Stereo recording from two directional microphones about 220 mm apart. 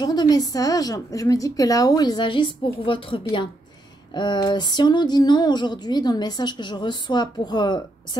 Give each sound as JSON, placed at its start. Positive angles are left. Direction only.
{"t": 0.0, "sound": "a woman's voice", "side_deg": 20}